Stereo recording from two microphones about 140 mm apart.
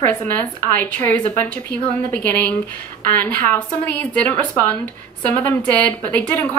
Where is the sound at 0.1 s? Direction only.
10° left (ahead or behind).